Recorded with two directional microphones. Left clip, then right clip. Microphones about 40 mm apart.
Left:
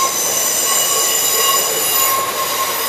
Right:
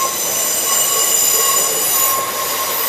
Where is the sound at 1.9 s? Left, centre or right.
Left.